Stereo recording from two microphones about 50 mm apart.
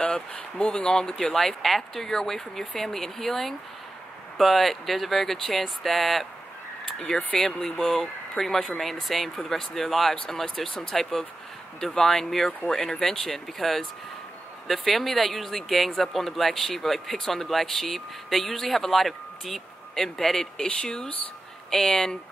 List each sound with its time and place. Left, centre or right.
0.0 s speech: left; by 6.2 s centre
7.5 s speech: centre